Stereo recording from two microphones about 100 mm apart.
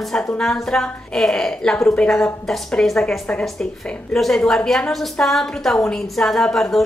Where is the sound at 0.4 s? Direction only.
5° left (ahead or behind).